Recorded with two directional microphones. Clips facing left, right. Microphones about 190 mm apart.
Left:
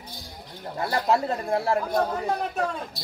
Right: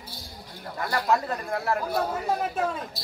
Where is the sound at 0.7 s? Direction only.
30° left (ahead or behind).